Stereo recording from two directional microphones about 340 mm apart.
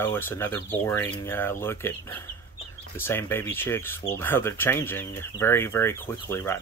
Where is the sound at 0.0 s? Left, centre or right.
Centre.